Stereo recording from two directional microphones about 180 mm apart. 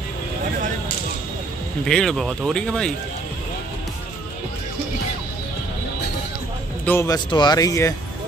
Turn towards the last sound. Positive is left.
turn(degrees=20)  # may be behind; listen again after turning